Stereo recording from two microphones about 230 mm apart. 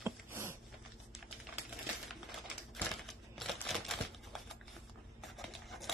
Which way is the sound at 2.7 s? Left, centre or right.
Centre.